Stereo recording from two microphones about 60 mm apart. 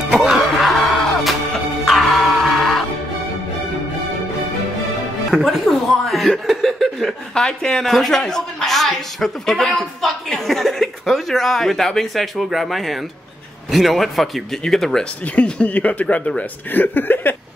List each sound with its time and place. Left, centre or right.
0.1 s music: centre
5.3 s speech: centre
15.2 s speech: left